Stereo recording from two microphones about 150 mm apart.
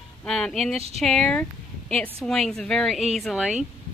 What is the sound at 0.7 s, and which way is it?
Speech, 45° right (ahead or behind).